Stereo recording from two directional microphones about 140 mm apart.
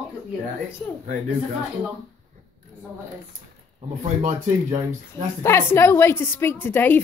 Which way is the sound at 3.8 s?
60° right (ahead or behind).